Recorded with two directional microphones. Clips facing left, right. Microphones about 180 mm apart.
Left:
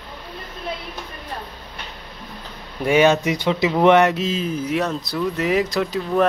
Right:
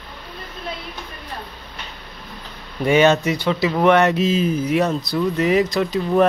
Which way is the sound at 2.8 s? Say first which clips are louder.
Right 1 dB; 10° left (ahead or behind).